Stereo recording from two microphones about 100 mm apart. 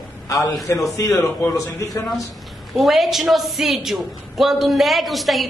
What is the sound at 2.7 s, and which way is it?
A woman's voice, centre (ahead or behind).